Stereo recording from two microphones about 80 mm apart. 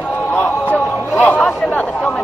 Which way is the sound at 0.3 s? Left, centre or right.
Centre.